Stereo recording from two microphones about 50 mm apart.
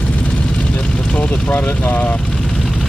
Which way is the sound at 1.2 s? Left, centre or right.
Left.